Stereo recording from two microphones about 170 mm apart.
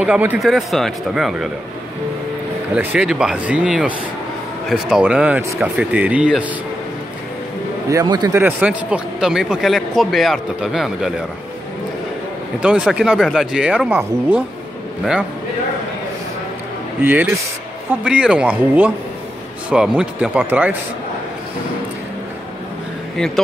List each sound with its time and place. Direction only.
0.0 s speech: 10° right (ahead or behind)
2.7 s speech: 5° right (ahead or behind)
7.9 s a man's voice: 25° right (ahead or behind)
8.3 s speech: 10° right (ahead or behind)
12.5 s speech: 5° right (ahead or behind)
17.0 s speech: 10° right (ahead or behind)
23.1 s speech: 5° left (ahead or behind)